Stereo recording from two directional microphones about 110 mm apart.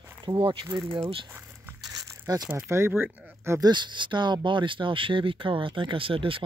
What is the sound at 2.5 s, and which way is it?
Speech, 25° right (ahead or behind).